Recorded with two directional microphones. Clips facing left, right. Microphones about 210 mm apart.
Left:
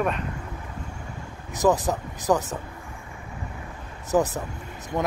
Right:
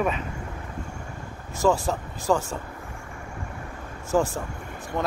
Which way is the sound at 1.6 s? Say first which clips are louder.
Left 1 dB; 20° left (ahead or behind).